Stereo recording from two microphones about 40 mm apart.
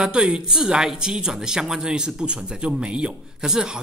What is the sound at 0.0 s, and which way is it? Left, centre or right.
Speech, right.